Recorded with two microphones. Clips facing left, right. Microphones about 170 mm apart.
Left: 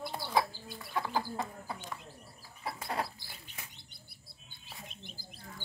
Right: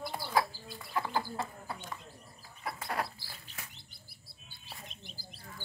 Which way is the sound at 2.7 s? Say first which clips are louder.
Even; 25° left (ahead or behind).